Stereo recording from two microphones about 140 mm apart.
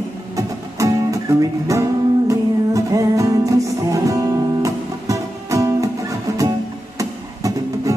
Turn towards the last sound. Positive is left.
turn(degrees=-25)  # may be behind; listen again after turning